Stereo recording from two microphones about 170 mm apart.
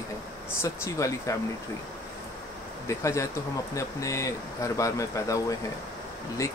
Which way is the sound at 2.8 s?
15° left (ahead or behind).